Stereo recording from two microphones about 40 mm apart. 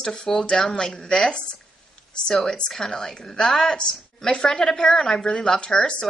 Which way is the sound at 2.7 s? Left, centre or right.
Centre.